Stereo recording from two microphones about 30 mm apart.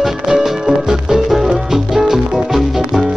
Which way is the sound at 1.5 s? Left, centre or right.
Centre.